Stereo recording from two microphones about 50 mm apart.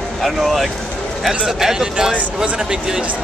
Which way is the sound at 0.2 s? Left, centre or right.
Centre.